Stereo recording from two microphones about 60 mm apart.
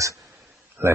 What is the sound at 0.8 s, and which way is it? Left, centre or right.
Speech, right.